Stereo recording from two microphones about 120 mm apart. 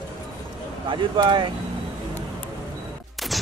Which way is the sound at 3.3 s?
Centre (ahead or behind).